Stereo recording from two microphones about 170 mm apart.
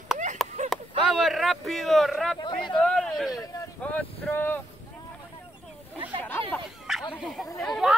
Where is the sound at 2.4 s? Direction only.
30° left (ahead or behind).